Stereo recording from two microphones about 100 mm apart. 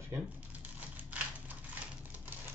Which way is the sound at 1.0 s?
15° right (ahead or behind).